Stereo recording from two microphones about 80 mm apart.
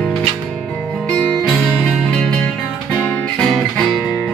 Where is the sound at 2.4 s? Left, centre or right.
Left.